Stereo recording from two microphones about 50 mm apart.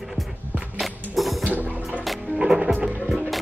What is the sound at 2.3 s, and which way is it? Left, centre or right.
Music, right.